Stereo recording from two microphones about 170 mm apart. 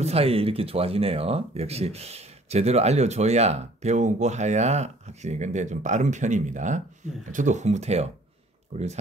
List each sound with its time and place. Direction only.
0.0 s speech: 35° right (ahead or behind)